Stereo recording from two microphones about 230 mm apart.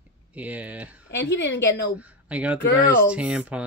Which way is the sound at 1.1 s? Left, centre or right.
Left.